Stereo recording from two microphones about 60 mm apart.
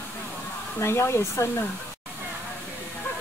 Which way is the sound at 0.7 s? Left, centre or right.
Left.